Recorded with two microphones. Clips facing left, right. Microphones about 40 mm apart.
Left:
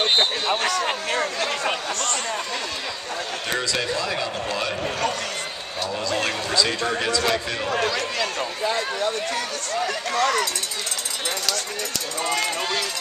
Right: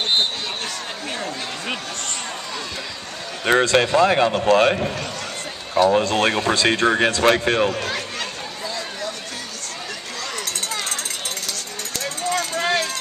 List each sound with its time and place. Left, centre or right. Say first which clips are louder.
0.5 s speech: left 7 dB; left
3.4 s speech: right 10 dB; right
5.9 s speech: right 4 dB; right
8.6 s a sound: left 5 dB; left
10.1 s speech: left 11 dB; left